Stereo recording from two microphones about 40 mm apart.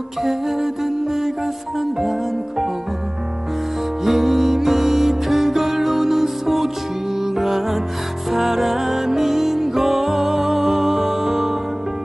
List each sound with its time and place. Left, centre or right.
0.2 s music: centre
4.0 s music: centre